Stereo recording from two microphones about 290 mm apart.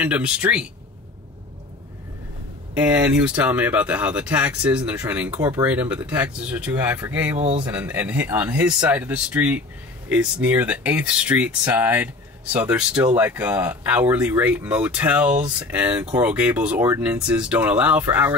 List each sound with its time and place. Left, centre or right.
0.0 s speech: centre
2.7 s speech: centre
7.3 s speech: right
7.6 s speech: centre